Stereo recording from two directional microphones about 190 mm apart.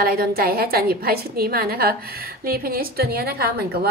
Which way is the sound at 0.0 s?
50° right (ahead or behind).